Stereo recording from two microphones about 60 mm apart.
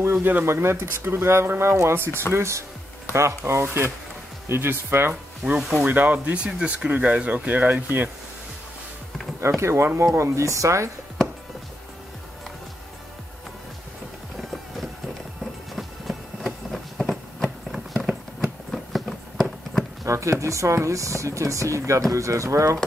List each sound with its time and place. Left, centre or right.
0.0 s speech: right
0.5 s speech: right
4.5 s speech: right
5.6 s speech: centre
5.9 s speech: right
9.6 s speech: right
15.7 s a sound: centre
20.1 s speech: right